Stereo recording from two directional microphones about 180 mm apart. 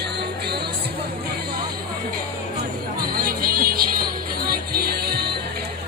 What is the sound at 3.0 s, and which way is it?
Music, 55° right (ahead or behind).